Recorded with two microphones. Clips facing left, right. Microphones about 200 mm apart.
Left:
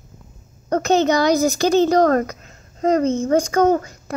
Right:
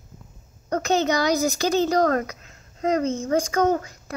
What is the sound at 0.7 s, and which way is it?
A woman's voice, 40° left (ahead or behind).